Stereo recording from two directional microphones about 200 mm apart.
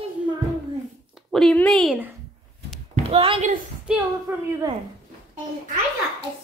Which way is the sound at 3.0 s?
30° right (ahead or behind).